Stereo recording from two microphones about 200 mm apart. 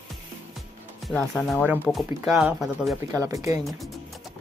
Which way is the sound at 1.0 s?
Centre (ahead or behind).